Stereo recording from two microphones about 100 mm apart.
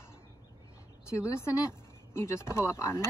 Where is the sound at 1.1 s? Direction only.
30° left (ahead or behind).